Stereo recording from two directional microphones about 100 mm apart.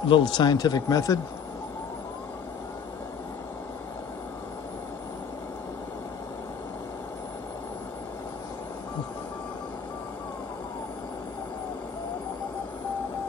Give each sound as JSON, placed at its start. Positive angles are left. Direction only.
{"t": 0.0, "sound": "speech", "side_deg": 55}